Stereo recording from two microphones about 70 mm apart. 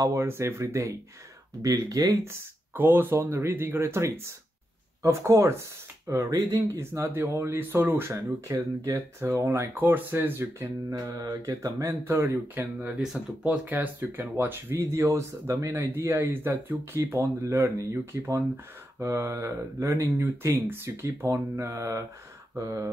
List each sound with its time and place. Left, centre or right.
0.0 s speech: right
1.6 s speech: right
2.7 s speech: right
6.8 s speech: right
8.1 s speech: right
11.4 s speech: right
11.9 s speech: right
12.5 s speech: right